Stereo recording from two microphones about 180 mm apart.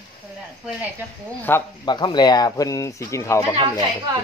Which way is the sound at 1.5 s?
10° left (ahead or behind).